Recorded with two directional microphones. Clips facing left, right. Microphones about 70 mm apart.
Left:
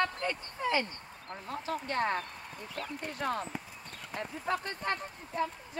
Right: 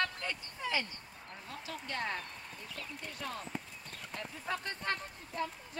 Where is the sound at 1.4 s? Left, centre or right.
Left.